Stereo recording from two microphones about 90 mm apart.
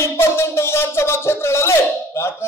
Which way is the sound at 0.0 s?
30° left (ahead or behind).